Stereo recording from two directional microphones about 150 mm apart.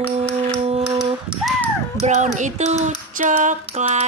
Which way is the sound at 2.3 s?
50° right (ahead or behind).